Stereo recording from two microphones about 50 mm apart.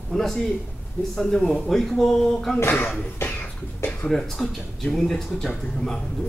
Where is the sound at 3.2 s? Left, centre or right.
Left.